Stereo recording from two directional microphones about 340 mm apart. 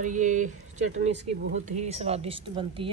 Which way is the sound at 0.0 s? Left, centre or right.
Right.